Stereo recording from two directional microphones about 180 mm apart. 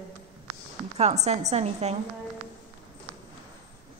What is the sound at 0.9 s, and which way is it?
A woman's voice, 40° right (ahead or behind).